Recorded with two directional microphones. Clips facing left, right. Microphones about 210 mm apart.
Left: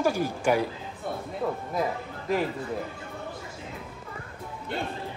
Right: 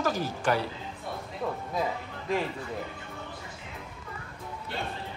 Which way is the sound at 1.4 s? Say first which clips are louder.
Left 3 dB; centre (ahead or behind).